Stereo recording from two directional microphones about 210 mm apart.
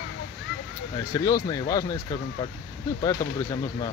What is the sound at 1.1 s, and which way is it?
Speech, 15° left (ahead or behind).